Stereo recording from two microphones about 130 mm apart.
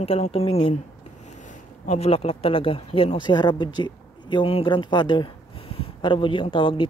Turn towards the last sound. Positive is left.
turn(degrees=40)  # may be behind; listen again after turning